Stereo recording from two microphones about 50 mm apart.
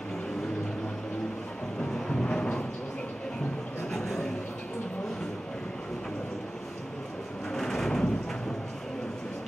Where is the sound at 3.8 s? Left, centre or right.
Centre.